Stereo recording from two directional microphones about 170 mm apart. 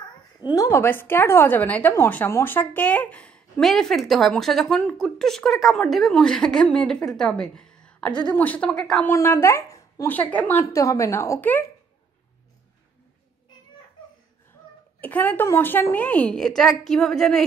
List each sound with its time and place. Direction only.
0.5 s a woman's voice: 20° left (ahead or behind)
9.1 s speech: 15° left (ahead or behind)
15.0 s speech: 10° left (ahead or behind)